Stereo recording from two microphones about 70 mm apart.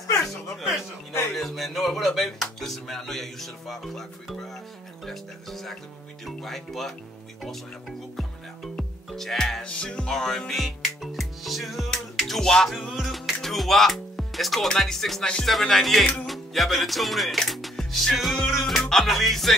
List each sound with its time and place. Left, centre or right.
0.2 s music: centre
1.3 s speech: centre
8.7 s music: centre